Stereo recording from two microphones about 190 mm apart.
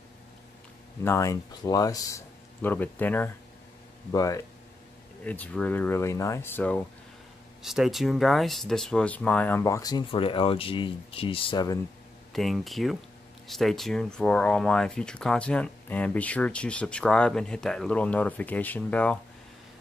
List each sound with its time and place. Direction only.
1.0 s speech: 15° left (ahead or behind)
7.6 s speech: centre (ahead or behind); by 11.8 s 20° left (ahead or behind)
12.3 s speech: centre (ahead or behind)